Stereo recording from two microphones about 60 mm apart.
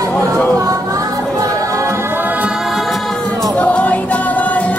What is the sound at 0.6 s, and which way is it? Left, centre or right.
Music, right.